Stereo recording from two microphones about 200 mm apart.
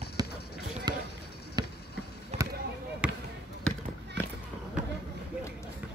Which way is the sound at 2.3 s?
35° right (ahead or behind).